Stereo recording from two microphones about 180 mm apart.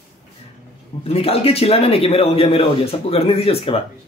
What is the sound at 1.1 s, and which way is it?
Speech, 35° left (ahead or behind).